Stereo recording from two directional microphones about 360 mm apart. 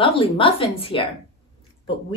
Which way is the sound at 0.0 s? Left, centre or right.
Centre.